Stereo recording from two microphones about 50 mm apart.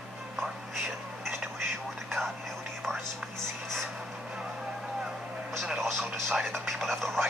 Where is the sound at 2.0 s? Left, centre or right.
Centre.